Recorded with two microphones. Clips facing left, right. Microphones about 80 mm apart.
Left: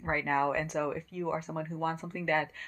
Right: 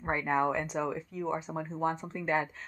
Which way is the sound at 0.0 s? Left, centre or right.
Centre.